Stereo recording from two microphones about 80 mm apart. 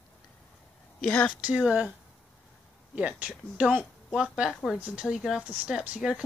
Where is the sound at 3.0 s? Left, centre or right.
Centre.